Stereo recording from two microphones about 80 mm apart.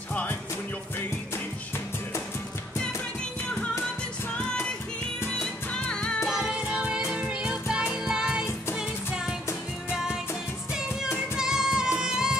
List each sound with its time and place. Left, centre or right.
0.1 s music: centre
4.4 s music: centre
6.2 s music: centre
11.3 s music: centre